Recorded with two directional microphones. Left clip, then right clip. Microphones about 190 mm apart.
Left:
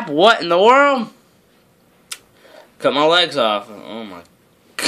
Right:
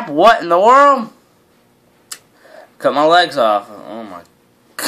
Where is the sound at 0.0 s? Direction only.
25° left (ahead or behind).